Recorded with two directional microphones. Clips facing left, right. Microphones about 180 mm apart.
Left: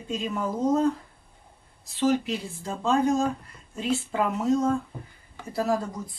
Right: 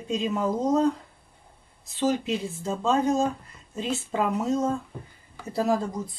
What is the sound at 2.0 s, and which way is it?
Speech, 20° right (ahead or behind).